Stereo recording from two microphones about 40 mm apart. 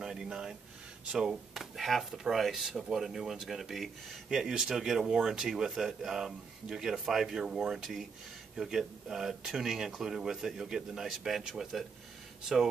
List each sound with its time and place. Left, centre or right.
0.0 s a man's voice: centre
4.3 s a man's voice: centre
5.7 s a man's voice: centre